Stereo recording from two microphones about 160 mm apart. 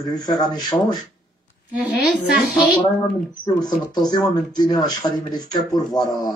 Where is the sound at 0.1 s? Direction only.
25° left (ahead or behind).